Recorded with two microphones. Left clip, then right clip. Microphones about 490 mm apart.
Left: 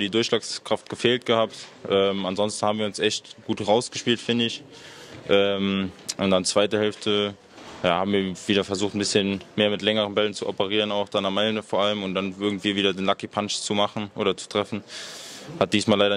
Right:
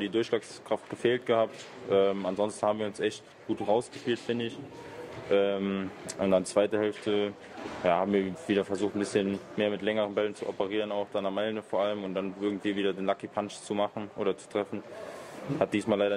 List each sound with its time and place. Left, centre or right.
0.0 s speech: left